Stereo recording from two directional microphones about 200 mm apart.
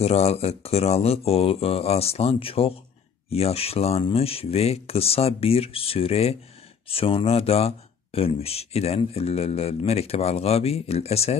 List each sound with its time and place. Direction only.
0.0 s speech: 30° left (ahead or behind)